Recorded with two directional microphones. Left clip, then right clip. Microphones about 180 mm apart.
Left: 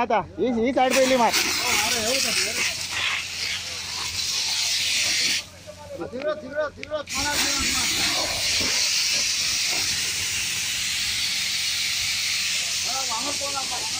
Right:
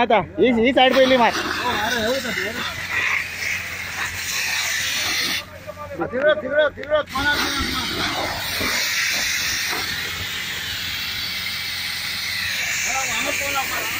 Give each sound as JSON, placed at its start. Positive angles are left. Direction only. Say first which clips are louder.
{"t": 0.0, "sound": "speech", "louder": "right 6 dB", "side_deg": -5}
{"t": 1.0, "sound": "speech", "louder": "right 4 dB", "side_deg": 15}
{"t": 1.3, "sound": "speech", "louder": "even", "side_deg": -10}
{"t": 4.9, "sound": "pig", "louder": "right 1 dB", "side_deg": -25}
{"t": 6.1, "sound": "speech", "louder": "right 10 dB", "side_deg": -25}
{"t": 8.6, "sound": "hiss", "louder": "right 2 dB", "side_deg": -20}
{"t": 13.1, "sound": "hiss", "louder": "right 4 dB", "side_deg": -45}